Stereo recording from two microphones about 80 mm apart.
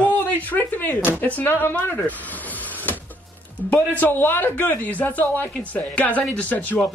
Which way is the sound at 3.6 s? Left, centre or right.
Left.